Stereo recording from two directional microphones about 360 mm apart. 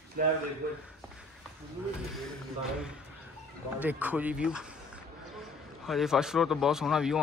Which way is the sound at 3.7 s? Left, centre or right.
Centre.